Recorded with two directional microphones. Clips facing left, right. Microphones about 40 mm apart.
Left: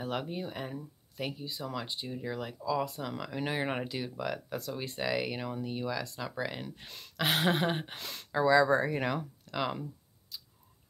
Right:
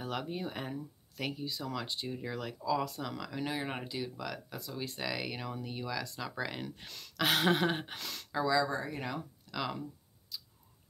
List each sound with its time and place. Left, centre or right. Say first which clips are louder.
0.0 s speech: left 2 dB; centre
0.4 s speech: left 1 dB; centre
0.7 s speech: left 1 dB; centre
2.0 s speech: left 2 dB; centre
2.3 s speech: left 1 dB; centre
6.9 s speech: even; centre
8.6 s speech: left 8 dB; left
9.5 s speech: left 3 dB; left